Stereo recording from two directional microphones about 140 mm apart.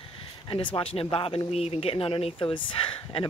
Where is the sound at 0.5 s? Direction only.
35° left (ahead or behind).